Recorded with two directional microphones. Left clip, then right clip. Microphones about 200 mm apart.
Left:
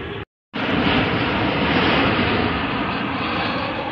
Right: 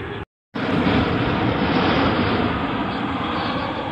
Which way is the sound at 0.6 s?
15° right (ahead or behind).